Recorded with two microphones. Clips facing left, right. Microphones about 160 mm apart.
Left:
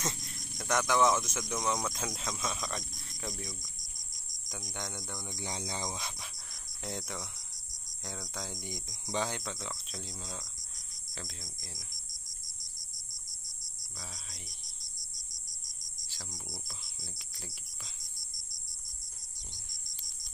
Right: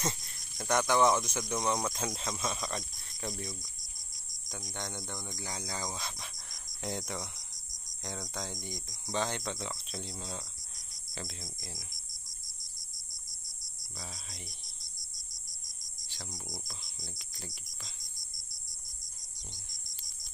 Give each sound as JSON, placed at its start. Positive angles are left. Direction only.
{"t": 0.6, "sound": "speech", "side_deg": 0}
{"t": 5.4, "sound": "speech", "side_deg": 20}
{"t": 6.8, "sound": "speech", "side_deg": 0}
{"t": 8.6, "sound": "speech", "side_deg": 20}
{"t": 9.1, "sound": "speech", "side_deg": 10}
{"t": 11.5, "sound": "speech", "side_deg": -10}
{"t": 13.9, "sound": "speech", "side_deg": -10}
{"t": 16.2, "sound": "cricket", "side_deg": -10}
{"t": 17.4, "sound": "speech", "side_deg": 10}